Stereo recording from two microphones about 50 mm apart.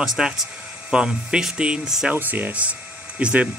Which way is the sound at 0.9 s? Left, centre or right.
Centre.